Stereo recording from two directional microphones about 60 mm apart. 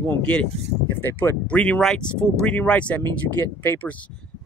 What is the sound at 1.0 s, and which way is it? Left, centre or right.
Speech, left.